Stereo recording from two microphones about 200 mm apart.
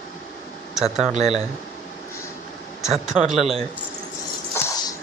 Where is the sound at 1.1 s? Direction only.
35° right (ahead or behind).